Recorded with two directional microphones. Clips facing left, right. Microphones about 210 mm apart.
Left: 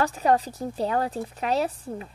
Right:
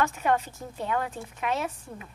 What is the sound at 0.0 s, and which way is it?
A woman's voice, 35° left (ahead or behind).